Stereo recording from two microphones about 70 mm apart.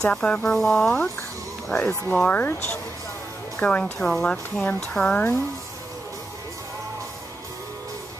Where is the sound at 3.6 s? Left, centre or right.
Centre.